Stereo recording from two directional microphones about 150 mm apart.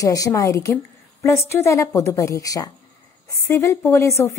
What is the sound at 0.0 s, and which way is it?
A woman's voice, 25° left (ahead or behind).